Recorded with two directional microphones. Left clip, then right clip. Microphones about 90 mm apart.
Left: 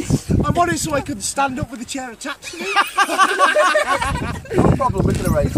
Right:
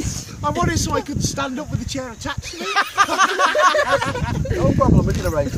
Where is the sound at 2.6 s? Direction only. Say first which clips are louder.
Left 1 dB; 35° right (ahead or behind); by 4.3 s 20° right (ahead or behind).